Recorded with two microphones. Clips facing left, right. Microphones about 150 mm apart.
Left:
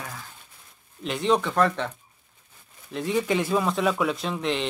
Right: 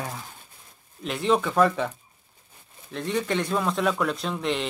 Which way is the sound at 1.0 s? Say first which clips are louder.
Even; centre (ahead or behind).